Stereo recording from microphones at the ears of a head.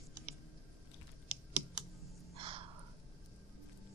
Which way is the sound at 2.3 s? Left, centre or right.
Right.